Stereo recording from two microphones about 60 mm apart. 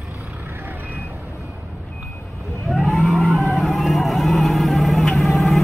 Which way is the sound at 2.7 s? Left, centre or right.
Centre.